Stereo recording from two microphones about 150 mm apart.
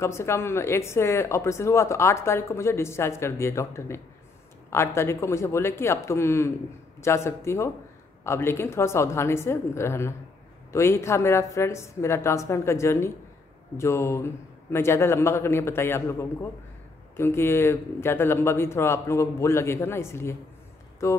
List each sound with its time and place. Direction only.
0.0 s speech: 20° left (ahead or behind)